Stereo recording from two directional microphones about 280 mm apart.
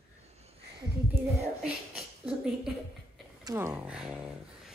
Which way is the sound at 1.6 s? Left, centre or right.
Centre.